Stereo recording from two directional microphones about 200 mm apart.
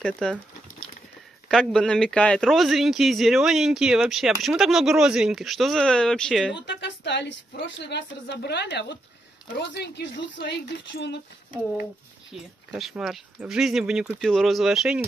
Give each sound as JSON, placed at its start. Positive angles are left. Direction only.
{"t": 0.0, "sound": "speech", "side_deg": 5}
{"t": 1.5, "sound": "speech", "side_deg": 5}
{"t": 6.5, "sound": "a woman's voice", "side_deg": 60}
{"t": 12.3, "sound": "speech", "side_deg": 0}